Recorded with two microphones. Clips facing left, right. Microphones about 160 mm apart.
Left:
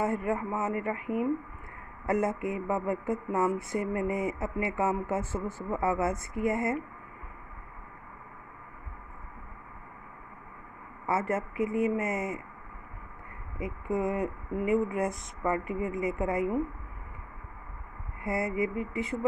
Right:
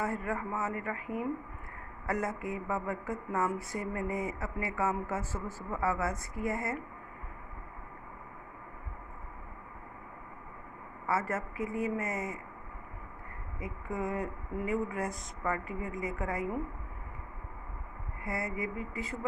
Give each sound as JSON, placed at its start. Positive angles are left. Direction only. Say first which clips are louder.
{"t": 0.0, "sound": "speech", "louder": "left 5 dB", "side_deg": 20}
{"t": 2.0, "sound": "speech", "louder": "left 6 dB", "side_deg": 25}
{"t": 11.1, "sound": "speech", "louder": "left 3 dB", "side_deg": 20}
{"t": 13.6, "sound": "speech", "louder": "left 6 dB", "side_deg": 20}
{"t": 18.2, "sound": "speech", "louder": "left 6 dB", "side_deg": 25}